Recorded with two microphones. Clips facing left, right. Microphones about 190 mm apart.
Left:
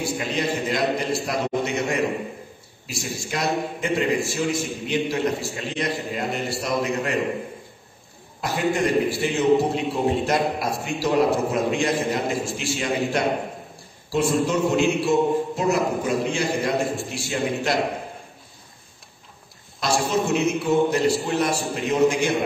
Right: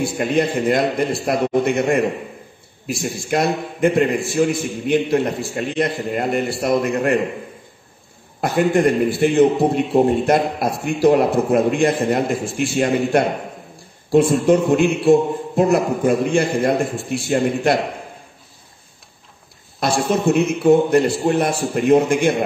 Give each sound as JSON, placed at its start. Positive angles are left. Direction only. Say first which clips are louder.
{"t": 0.0, "sound": "a man's voice", "louder": "right 7 dB", "side_deg": -55}
{"t": 8.4, "sound": "a man's voice", "louder": "right 6 dB", "side_deg": -55}
{"t": 19.8, "sound": "a man's voice", "louder": "right 4 dB", "side_deg": -55}